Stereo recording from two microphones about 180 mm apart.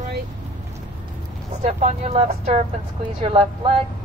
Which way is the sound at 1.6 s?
35° right (ahead or behind).